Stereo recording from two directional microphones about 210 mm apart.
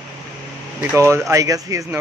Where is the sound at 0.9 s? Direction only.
15° right (ahead or behind).